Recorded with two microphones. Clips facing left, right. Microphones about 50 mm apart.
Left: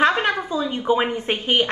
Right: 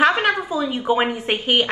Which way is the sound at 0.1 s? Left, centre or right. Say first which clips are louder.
Right 2 dB; right.